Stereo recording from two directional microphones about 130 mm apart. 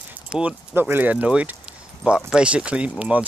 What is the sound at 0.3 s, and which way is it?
Speech, 10° right (ahead or behind).